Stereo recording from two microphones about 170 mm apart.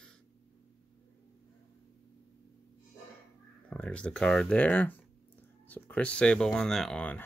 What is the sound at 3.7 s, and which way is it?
Speech, 5° left (ahead or behind).